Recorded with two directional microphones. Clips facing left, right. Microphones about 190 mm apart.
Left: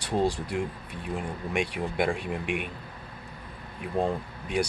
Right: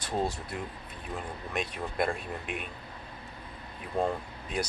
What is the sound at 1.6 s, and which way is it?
Speech, 75° left (ahead or behind).